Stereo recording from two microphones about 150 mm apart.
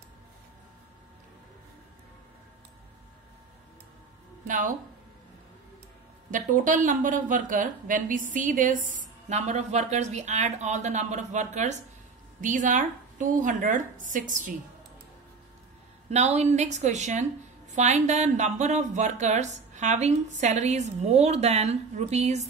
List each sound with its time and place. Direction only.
4.5 s speech: 60° right (ahead or behind)
6.3 s speech: 60° right (ahead or behind)
16.1 s speech: 45° right (ahead or behind)